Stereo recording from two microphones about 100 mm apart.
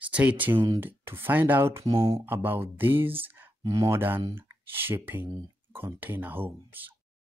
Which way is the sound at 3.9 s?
20° right (ahead or behind).